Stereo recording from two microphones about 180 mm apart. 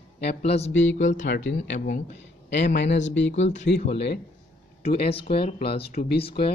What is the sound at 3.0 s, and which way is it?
Speech, 90° left.